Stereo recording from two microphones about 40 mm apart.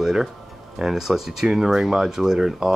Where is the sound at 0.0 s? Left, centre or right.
Centre.